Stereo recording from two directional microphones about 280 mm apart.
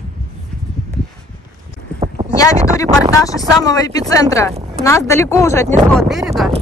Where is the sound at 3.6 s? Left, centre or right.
Centre.